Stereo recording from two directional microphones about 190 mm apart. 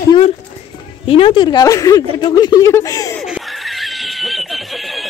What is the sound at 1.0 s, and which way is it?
Speech, 30° left (ahead or behind).